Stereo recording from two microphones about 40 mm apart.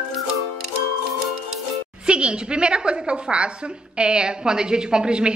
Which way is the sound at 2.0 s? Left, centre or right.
Right.